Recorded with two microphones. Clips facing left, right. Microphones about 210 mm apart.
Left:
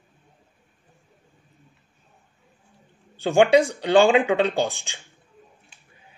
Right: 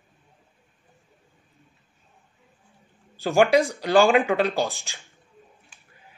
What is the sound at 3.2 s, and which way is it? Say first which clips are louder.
Speech: left 2 dB; 30° left (ahead or behind).